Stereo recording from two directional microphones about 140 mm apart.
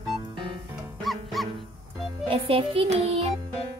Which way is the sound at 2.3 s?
40° right (ahead or behind).